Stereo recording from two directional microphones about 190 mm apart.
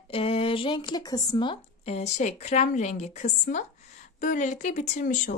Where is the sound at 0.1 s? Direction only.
30° left (ahead or behind).